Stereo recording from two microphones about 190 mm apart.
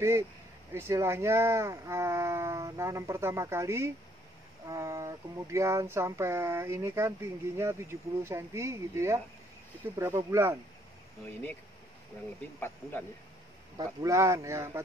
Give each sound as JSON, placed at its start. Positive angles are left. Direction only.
{"t": 0.7, "sound": "speech", "side_deg": -15}
{"t": 12.5, "sound": "speech", "side_deg": 10}
{"t": 13.7, "sound": "speech", "side_deg": -15}